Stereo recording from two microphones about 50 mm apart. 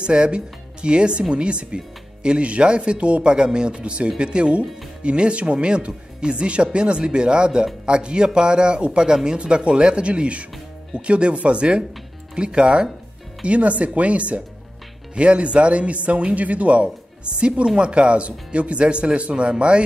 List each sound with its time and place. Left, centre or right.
0.0 s speech: centre